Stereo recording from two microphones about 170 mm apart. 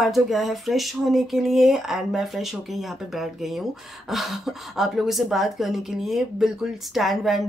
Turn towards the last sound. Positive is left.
turn(degrees=0)  # may be behind; listen again after turning